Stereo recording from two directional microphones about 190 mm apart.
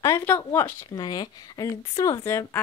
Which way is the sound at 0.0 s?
10° left (ahead or behind).